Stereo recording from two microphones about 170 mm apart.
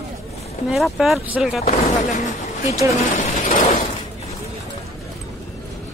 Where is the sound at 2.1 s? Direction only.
45° left (ahead or behind).